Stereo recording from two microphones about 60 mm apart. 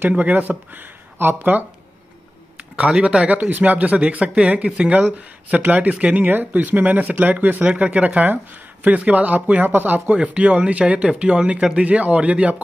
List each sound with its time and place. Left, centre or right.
0.1 s speech: right
2.7 s speech: centre